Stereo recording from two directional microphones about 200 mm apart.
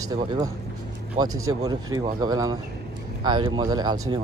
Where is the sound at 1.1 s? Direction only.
20° right (ahead or behind).